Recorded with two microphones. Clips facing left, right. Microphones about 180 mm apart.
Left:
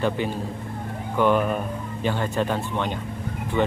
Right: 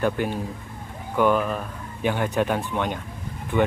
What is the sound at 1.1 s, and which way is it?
Speech, 10° right (ahead or behind).